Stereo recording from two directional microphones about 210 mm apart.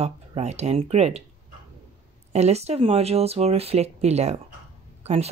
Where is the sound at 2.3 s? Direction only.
30° right (ahead or behind).